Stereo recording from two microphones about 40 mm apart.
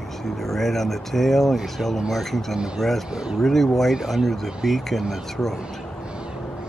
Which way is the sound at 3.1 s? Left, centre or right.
Right.